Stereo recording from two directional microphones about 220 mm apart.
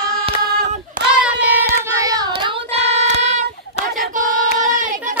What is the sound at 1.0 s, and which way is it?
Child singing, 40° right (ahead or behind).